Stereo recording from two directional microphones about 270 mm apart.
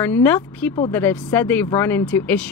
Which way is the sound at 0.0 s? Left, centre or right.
Centre.